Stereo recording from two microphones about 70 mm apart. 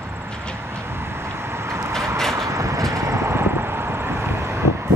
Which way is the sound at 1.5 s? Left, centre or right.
Right.